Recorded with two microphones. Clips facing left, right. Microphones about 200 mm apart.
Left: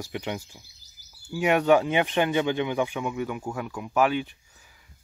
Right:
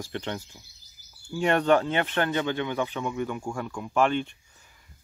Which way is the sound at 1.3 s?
10° left (ahead or behind).